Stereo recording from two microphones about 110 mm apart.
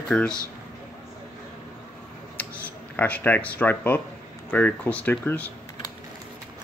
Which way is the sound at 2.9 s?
15° left (ahead or behind).